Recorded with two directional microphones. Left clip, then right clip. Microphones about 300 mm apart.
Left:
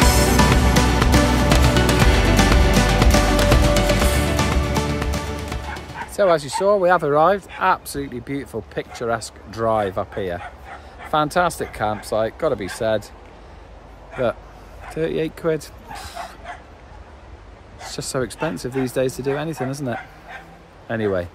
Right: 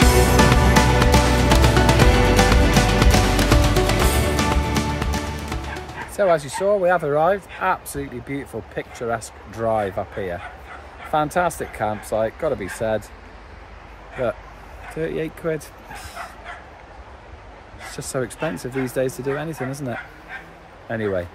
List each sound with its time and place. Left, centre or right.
0.0 s music: centre
11.1 s speech: centre
15.0 s speech: centre
16.2 s dog: left
17.9 s speech: centre